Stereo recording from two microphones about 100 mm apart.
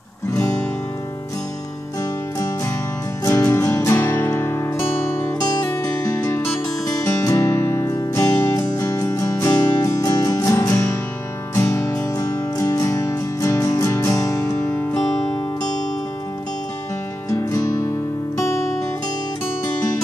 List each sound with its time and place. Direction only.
3.3 s music: 25° left (ahead or behind)
5.4 s music: 40° left (ahead or behind)
7.0 s music: 30° left (ahead or behind)
14.7 s music: 10° left (ahead or behind)
17.3 s music: 30° left (ahead or behind)